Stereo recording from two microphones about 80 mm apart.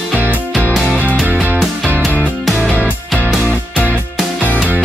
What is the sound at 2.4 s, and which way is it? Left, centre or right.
Music, centre.